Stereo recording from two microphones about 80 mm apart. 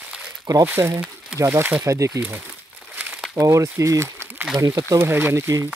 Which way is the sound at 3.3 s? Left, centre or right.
Right.